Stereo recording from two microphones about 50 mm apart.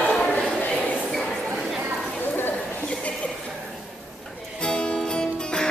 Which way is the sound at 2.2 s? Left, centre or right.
Left.